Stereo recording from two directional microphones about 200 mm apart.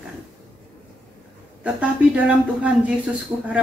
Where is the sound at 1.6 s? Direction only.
5° right (ahead or behind).